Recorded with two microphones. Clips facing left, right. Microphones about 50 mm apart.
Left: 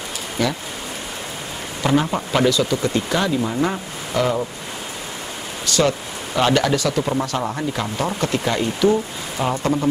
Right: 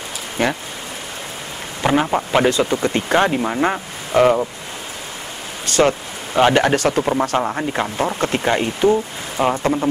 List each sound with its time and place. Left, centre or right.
0.4 s speech: right
1.8 s a sound: right
2.0 s speech: centre
2.4 s speech: right
5.7 s speech: right
6.7 s speech: right
7.4 s speech: right